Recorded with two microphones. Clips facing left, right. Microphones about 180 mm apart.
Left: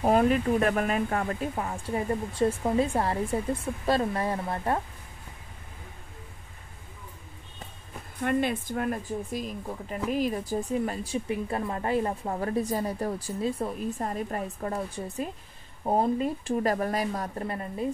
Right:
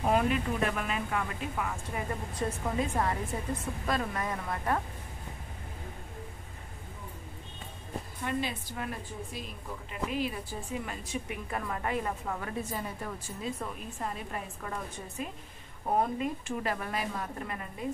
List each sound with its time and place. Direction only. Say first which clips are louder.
0.0 s a woman's voice: left 5 dB; 40° left (ahead or behind)
8.2 s a woman's voice: left 8 dB; 55° left (ahead or behind)
15.9 s a woman's voice: left 4 dB; 30° left (ahead or behind)